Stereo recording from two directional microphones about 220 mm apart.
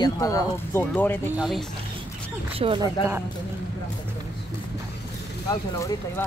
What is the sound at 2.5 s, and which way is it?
Speech, 20° right (ahead or behind).